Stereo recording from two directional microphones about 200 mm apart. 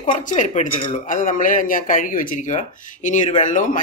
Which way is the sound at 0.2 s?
40° left (ahead or behind).